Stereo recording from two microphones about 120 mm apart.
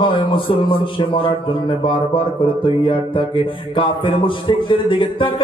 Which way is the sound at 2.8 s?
45° left (ahead or behind).